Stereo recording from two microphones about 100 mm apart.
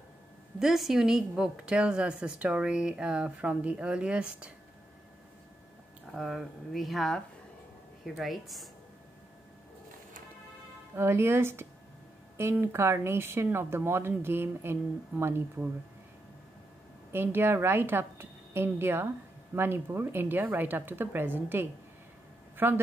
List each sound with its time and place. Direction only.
0.6 s a woman's voice: 5° right (ahead or behind)
6.1 s speech: centre (ahead or behind)
11.0 s speech: 25° right (ahead or behind)
17.1 s speech: 20° right (ahead or behind)